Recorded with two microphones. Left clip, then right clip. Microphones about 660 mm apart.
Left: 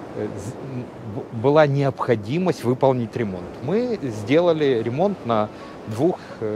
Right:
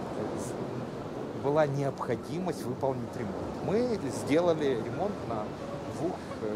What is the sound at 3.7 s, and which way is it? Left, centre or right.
Speech, left.